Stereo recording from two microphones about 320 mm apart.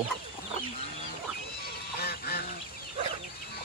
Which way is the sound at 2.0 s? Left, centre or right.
Left.